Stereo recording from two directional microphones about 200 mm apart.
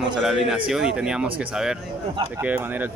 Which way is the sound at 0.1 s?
Centre (ahead or behind).